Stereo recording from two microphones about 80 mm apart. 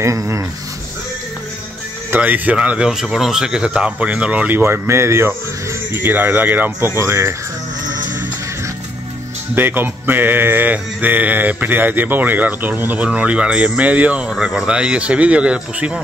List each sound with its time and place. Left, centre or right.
0.0 s speech: right
2.0 s speech: right
7.0 s speech: right
9.6 s speech: right
14.3 s speech: centre